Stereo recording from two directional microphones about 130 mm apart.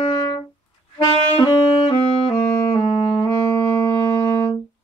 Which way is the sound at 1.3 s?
35° left (ahead or behind).